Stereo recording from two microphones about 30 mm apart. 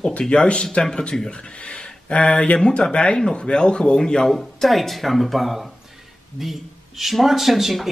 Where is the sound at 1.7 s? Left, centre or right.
Left.